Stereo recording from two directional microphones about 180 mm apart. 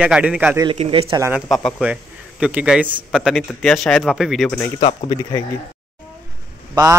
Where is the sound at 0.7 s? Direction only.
30° right (ahead or behind).